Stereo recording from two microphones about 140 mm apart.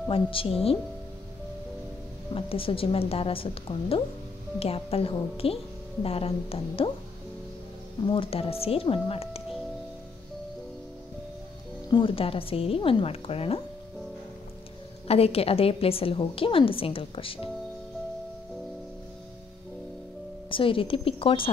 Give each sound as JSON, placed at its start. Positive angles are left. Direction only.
{"t": 0.1, "sound": "speech", "side_deg": 40}
{"t": 2.3, "sound": "a woman's voice", "side_deg": 40}
{"t": 8.1, "sound": "speech", "side_deg": 40}
{"t": 11.9, "sound": "a woman's voice", "side_deg": 40}
{"t": 15.0, "sound": "a woman's voice", "side_deg": 45}
{"t": 20.4, "sound": "a woman's voice", "side_deg": 40}